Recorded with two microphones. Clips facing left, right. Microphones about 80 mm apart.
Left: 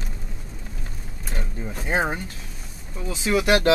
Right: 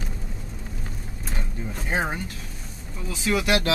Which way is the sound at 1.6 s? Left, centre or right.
Centre.